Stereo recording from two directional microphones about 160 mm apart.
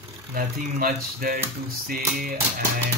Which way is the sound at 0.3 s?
70° right (ahead or behind).